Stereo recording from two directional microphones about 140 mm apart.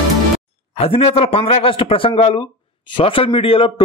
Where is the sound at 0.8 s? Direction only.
45° left (ahead or behind).